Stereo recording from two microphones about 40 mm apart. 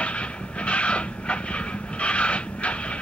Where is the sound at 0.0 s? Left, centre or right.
Left.